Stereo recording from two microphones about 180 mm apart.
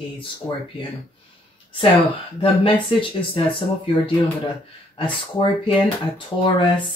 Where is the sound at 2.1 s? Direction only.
30° left (ahead or behind).